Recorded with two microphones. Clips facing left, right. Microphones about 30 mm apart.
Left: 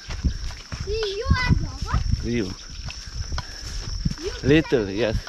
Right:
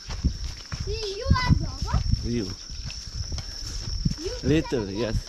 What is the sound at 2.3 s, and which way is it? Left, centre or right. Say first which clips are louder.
Speech: left 5 dB; left.